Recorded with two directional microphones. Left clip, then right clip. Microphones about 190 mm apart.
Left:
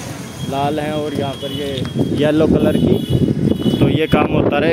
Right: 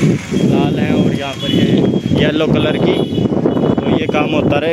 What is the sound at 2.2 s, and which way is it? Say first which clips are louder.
Speech: left 1 dB; 5° right (ahead or behind).